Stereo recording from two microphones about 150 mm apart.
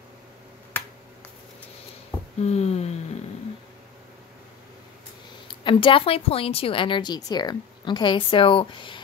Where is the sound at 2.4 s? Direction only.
45° left (ahead or behind).